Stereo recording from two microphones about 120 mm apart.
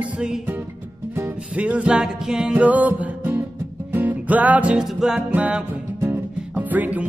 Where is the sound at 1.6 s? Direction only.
10° right (ahead or behind).